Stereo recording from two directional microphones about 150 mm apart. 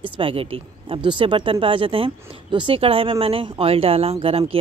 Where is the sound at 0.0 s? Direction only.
35° right (ahead or behind).